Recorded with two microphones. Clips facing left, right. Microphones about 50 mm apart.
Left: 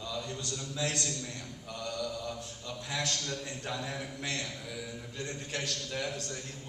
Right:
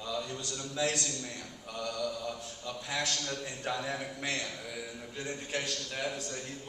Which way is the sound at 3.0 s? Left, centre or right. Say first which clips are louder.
Even; right.